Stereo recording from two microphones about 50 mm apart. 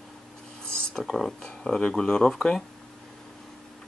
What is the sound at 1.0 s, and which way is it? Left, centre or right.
Speech, centre.